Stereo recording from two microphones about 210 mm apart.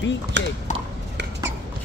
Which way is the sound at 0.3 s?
55° right (ahead or behind).